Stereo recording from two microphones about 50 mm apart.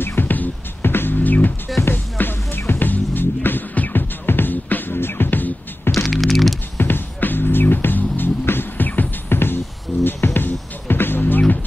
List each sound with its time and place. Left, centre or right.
0.0 s music: left
6.0 s typing: centre
6.8 s music: left